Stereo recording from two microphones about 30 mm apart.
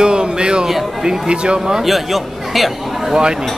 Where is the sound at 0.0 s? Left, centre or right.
Right.